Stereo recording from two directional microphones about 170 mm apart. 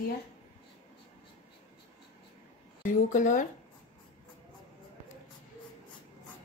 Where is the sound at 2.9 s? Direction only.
50° left (ahead or behind).